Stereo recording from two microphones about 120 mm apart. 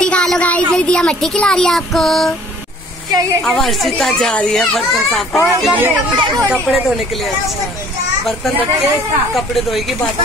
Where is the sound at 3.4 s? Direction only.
5° left (ahead or behind).